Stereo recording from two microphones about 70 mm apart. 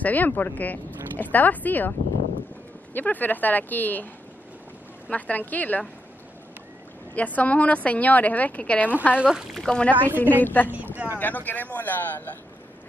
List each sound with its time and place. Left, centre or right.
0.0 s a woman's voice: left
5.1 s a woman's voice: left
7.2 s a woman's voice: left
9.1 s speech: centre
9.5 s a woman's voice: centre; by 10.7 s left
10.7 s speech: right
11.1 s a woman's voice: left